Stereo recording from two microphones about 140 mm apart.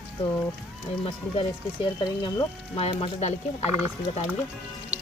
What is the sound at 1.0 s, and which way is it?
Speech, 35° left (ahead or behind).